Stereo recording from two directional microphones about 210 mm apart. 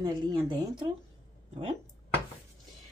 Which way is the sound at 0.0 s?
20° right (ahead or behind).